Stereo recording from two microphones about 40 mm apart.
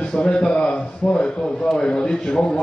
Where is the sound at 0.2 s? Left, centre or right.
Left.